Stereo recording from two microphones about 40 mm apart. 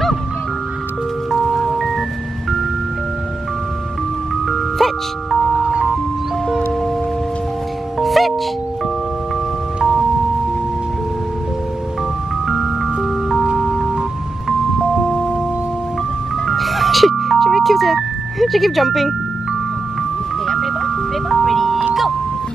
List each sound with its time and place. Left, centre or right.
1.7 s music: centre
4.5 s music: centre
5.6 s music: right
8.0 s music: centre
12.4 s music: centre
15.0 s music: centre
16.4 s music: centre
20.4 s ice cream truck: centre